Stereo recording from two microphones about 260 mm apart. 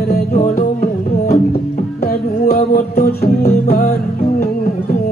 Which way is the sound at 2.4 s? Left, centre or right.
Left.